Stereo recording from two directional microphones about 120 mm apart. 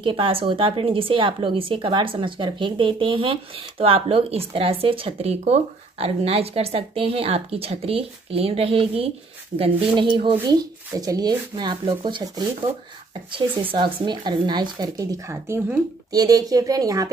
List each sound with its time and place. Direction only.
0.0 s speech: 45° right (ahead or behind)
9.9 s speech: 40° right (ahead or behind)
13.7 s speech: 45° right (ahead or behind); by 16.2 s 20° right (ahead or behind)
16.2 s speech: 30° right (ahead or behind)